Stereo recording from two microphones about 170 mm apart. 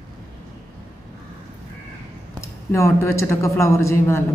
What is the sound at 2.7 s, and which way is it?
A man's voice, 15° left (ahead or behind).